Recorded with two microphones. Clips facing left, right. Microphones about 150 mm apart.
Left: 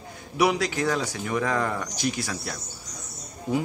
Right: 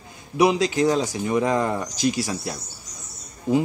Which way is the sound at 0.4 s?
25° right (ahead or behind).